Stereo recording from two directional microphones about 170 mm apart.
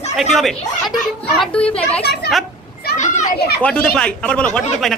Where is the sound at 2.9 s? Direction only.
45° left (ahead or behind).